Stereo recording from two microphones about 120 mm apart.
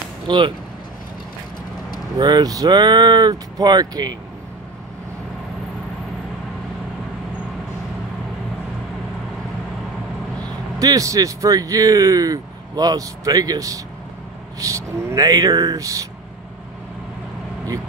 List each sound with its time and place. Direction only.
0.3 s speech: 35° right (ahead or behind)
2.1 s speech: 35° right (ahead or behind)
10.8 s speech: 30° right (ahead or behind)